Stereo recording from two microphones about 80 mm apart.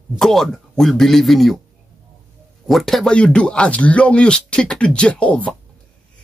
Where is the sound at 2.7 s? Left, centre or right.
Centre.